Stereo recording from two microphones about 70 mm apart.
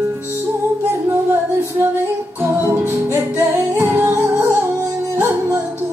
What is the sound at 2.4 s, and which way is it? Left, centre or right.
Music, right.